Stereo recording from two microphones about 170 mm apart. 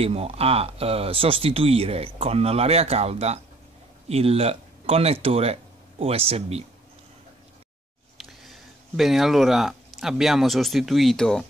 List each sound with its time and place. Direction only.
0.0 s speech: 35° right (ahead or behind)
8.2 s speech: centre (ahead or behind)